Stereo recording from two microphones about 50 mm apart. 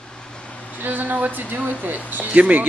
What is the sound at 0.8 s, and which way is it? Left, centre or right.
Speech, right.